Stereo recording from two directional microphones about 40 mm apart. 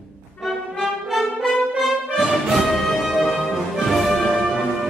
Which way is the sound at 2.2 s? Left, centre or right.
Centre.